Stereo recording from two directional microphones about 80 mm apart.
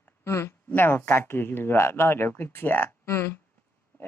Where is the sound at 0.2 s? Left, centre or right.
Left.